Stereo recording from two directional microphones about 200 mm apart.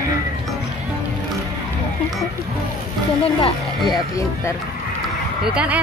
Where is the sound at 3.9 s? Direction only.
15° left (ahead or behind).